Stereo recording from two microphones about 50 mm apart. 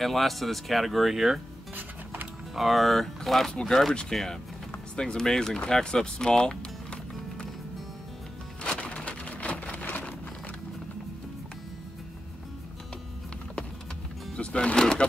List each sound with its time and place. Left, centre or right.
0.0 s speech: centre
2.5 s speech: centre
8.6 s a sound: left
14.3 s speech: left